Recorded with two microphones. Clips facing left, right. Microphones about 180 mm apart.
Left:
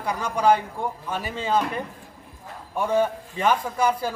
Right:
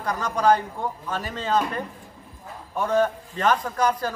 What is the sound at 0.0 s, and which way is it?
A woman's voice, 10° left (ahead or behind).